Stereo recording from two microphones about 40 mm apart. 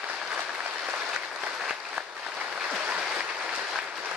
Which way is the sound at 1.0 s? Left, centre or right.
Right.